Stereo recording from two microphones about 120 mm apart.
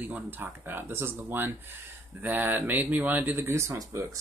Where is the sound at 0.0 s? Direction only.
15° right (ahead or behind).